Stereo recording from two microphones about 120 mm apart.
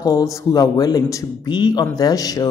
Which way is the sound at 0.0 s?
30° left (ahead or behind).